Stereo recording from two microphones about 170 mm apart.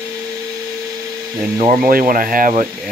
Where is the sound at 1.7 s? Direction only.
55° right (ahead or behind).